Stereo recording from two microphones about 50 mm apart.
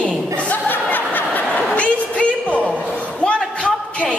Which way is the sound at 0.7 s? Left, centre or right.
Left.